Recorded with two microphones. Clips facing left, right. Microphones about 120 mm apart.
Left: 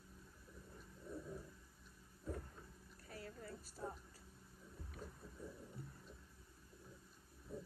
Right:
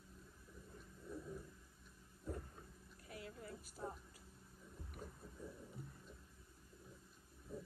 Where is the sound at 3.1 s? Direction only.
40° left (ahead or behind).